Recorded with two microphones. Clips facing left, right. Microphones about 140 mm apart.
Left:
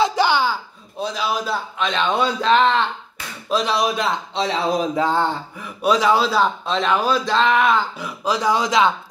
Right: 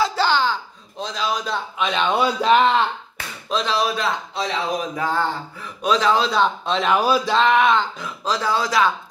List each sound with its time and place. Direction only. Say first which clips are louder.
0.0 s a sound: left 2 dB; 15° left (ahead or behind)
1.8 s speech: right 1 dB; 5° right (ahead or behind)
3.4 s speech: left 2 dB; 10° left (ahead or behind)
4.4 s speech: left 5 dB; 25° left (ahead or behind)
5.8 s speech: left 2 dB; 10° left (ahead or behind)